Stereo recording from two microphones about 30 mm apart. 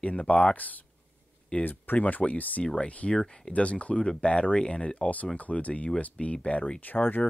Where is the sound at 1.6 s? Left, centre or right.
Left.